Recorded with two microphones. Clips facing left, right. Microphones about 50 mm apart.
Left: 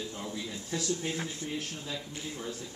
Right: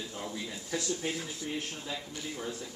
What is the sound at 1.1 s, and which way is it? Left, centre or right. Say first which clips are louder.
Speech: left 2 dB; left.